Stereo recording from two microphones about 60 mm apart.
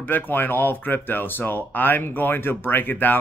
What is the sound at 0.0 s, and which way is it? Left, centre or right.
Speech, left.